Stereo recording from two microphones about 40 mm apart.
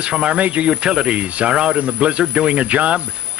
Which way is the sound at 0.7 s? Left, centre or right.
Centre.